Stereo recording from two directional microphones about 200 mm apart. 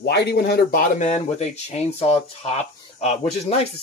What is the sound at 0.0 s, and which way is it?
Speech, 55° left (ahead or behind).